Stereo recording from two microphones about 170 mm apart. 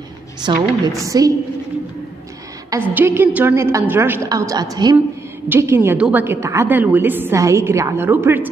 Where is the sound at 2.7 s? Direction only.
10° right (ahead or behind).